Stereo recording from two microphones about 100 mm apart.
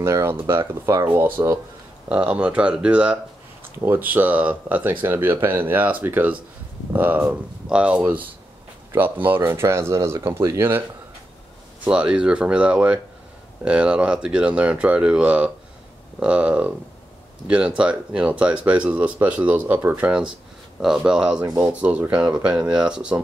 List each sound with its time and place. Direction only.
0.0 s speech: 25° right (ahead or behind)
7.2 s speech: 10° right (ahead or behind); by 10.8 s 25° right (ahead or behind)
11.8 s speech: 10° right (ahead or behind)